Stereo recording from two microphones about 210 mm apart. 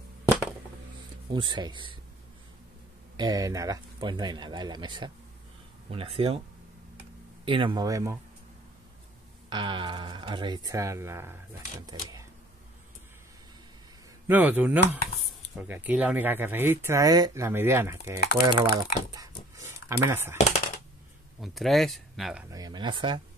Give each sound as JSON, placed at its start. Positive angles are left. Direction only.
{"t": 0.2, "sound": "a sound", "side_deg": -5}
{"t": 1.3, "sound": "speech", "side_deg": -20}
{"t": 3.2, "sound": "speech", "side_deg": -20}
{"t": 7.4, "sound": "speech", "side_deg": -25}
{"t": 9.5, "sound": "speech", "side_deg": -20}
{"t": 14.2, "sound": "speech", "side_deg": -10}
{"t": 20.3, "sound": "a sound", "side_deg": 30}
{"t": 21.4, "sound": "speech", "side_deg": 0}
{"t": 22.5, "sound": "speech", "side_deg": -20}